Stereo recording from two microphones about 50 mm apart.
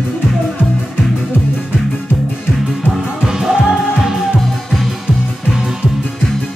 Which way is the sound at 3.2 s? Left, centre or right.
Centre.